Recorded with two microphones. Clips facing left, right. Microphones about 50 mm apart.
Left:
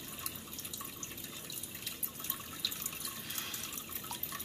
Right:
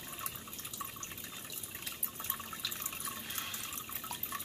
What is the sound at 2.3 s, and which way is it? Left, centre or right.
Water, right.